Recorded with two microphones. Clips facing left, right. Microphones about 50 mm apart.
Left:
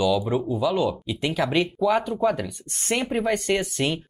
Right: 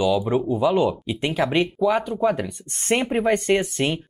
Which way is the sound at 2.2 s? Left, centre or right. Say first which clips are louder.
Right 1 dB; centre.